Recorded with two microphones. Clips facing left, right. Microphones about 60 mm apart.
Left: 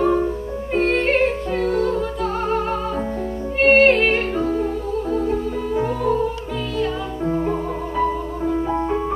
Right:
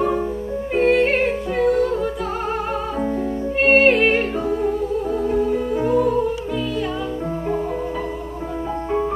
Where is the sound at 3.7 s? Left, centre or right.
Centre.